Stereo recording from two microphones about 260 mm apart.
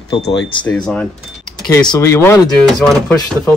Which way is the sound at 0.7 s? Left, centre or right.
Centre.